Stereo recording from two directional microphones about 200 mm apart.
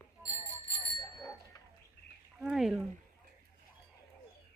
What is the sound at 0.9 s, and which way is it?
Bicycle bell, 20° left (ahead or behind).